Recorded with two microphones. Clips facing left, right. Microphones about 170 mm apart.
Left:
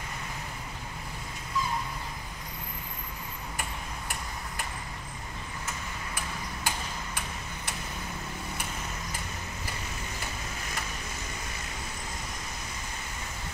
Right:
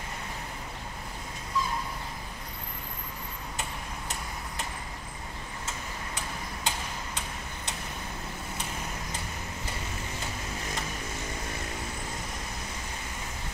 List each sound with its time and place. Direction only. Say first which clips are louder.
5.7 s tick-tock: right 1 dB; 20° right (ahead or behind)